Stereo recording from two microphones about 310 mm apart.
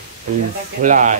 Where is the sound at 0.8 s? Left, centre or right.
Right.